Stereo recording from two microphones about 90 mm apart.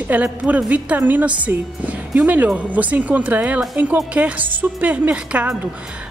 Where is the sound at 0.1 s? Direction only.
15° right (ahead or behind).